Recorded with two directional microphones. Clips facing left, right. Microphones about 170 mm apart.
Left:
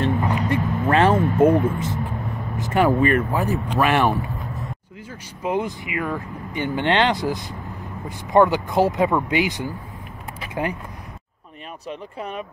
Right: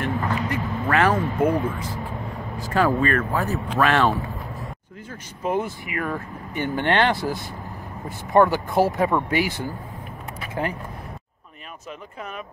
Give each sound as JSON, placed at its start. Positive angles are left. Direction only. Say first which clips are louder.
{"t": 0.2, "sound": "music", "louder": "left 3 dB", "side_deg": 20}
{"t": 2.5, "sound": "speech", "louder": "left 2 dB", "side_deg": 20}
{"t": 5.4, "sound": "speech", "louder": "left 1 dB", "side_deg": 15}
{"t": 12.2, "sound": "speech", "louder": "left 4 dB", "side_deg": 35}